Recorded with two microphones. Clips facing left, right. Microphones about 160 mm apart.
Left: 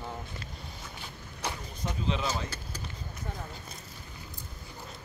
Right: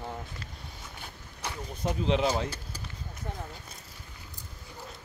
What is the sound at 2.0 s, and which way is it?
Speech, 65° right (ahead or behind).